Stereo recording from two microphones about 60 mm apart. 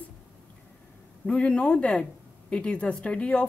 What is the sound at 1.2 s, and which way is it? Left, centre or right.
A woman's voice, centre.